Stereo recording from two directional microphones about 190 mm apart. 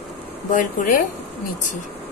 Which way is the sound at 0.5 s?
45° left (ahead or behind).